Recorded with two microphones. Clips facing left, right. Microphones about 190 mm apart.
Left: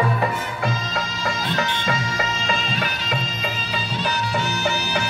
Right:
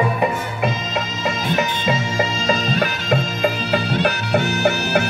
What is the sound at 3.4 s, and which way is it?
Music, 60° right (ahead or behind).